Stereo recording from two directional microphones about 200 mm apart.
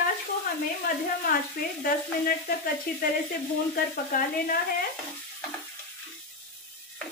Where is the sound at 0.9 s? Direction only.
45° left (ahead or behind).